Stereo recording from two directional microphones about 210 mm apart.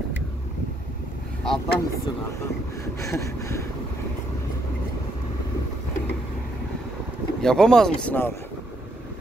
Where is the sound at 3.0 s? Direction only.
15° left (ahead or behind).